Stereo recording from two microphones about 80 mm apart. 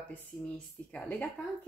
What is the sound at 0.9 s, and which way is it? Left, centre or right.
Speech, centre.